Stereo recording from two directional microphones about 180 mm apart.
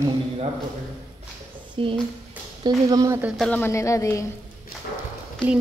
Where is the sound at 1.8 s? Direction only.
30° right (ahead or behind).